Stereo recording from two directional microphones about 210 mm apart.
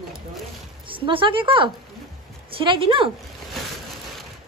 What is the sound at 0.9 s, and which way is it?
Speech, 25° right (ahead or behind).